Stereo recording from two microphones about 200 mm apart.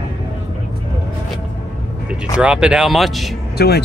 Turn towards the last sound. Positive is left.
turn(degrees=55)  # may be behind; listen again after turning